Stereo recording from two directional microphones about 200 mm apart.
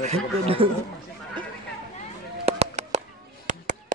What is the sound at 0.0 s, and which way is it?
Speech, 30° right (ahead or behind).